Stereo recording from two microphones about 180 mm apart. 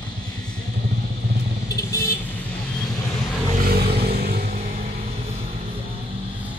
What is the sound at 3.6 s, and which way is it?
Vehicle, 60° right (ahead or behind).